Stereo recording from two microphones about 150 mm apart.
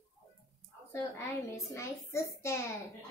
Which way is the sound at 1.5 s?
20° left (ahead or behind).